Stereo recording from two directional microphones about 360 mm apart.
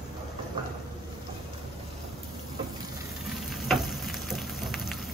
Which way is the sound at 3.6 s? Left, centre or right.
Centre.